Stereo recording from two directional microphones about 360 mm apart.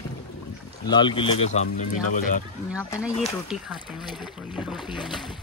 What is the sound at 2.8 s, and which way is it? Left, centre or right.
Speech, centre.